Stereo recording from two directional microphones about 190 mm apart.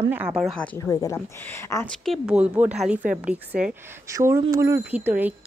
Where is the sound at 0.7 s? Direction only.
15° left (ahead or behind).